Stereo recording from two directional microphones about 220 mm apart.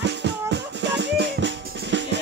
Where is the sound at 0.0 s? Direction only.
50° right (ahead or behind).